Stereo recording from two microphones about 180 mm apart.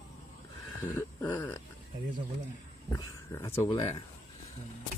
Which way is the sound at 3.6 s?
25° left (ahead or behind).